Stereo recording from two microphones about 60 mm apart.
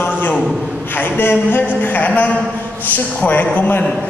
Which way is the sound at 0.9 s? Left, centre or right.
Left.